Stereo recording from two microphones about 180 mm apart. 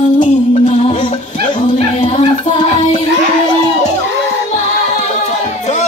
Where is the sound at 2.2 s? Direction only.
40° left (ahead or behind).